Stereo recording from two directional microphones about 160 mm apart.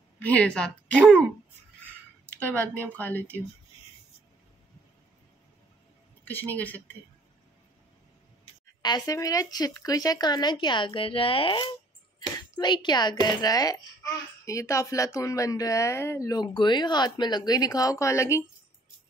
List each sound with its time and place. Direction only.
0.2 s speech: 10° left (ahead or behind)
2.2 s speech: 10° left (ahead or behind)
6.2 s speech: 10° left (ahead or behind)
8.6 s a child's voice: 25° left (ahead or behind)